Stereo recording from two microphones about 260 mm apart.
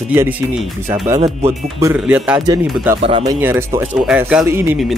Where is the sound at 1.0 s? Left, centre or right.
Centre.